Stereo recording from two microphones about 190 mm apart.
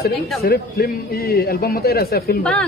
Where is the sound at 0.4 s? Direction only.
55° left (ahead or behind).